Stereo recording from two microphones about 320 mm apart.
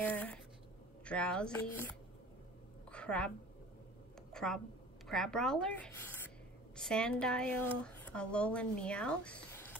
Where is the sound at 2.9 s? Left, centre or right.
Centre.